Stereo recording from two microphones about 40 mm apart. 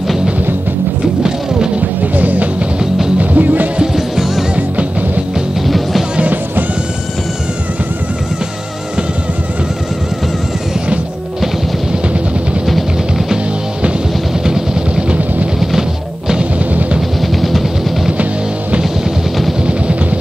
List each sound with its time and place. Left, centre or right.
2.1 s music: right
3.9 s music: centre
4.6 s music: right
14.4 s vehicle: centre
16.5 s music: right
17.4 s vehicle: centre
19.6 s a sound: right